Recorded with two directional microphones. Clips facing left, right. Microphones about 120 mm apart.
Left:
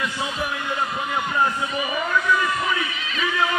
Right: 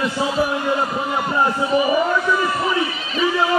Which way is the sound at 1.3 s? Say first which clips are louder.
Right 7 dB; 35° right (ahead or behind).